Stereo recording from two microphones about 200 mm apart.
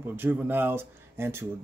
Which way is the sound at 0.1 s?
10° right (ahead or behind).